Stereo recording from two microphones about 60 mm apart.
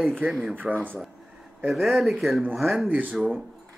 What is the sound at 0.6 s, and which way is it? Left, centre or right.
Speech, right.